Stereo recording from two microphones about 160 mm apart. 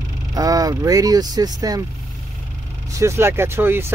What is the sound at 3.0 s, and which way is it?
Speech, 15° right (ahead or behind).